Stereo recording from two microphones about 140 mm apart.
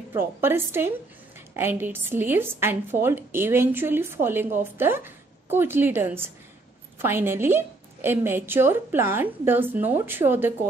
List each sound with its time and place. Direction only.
0.1 s a woman's voice: 15° right (ahead or behind)